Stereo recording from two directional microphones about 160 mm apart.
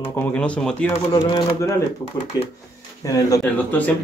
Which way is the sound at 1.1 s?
20° left (ahead or behind).